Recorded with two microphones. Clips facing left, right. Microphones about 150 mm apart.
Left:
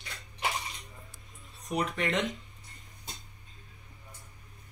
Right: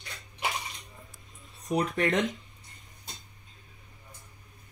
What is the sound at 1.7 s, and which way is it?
Speech, 45° right (ahead or behind).